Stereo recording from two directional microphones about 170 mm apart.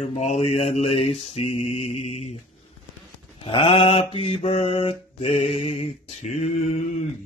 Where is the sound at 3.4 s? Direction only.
35° left (ahead or behind).